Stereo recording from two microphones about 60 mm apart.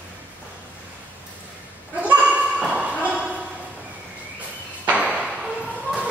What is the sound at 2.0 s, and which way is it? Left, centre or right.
Dog, right.